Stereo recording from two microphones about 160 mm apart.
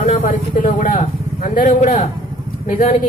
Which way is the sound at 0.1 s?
55° left (ahead or behind).